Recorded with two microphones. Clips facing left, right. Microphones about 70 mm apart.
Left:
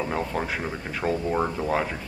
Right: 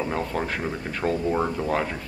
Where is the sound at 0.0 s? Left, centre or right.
Centre.